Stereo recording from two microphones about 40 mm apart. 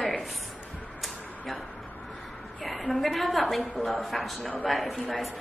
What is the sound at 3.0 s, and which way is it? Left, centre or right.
A woman's voice, centre.